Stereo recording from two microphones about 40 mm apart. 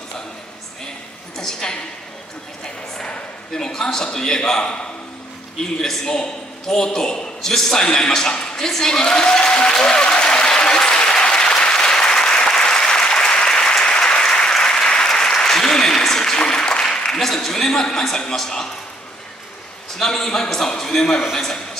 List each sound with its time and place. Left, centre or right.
1.3 s a woman's voice: centre
5.6 s a man's voice: centre
6.1 s a sound: centre
12.4 s applause: left
20.0 s a man's voice: centre